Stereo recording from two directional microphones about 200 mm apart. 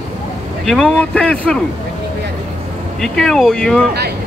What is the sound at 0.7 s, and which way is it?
Speech, centre (ahead or behind).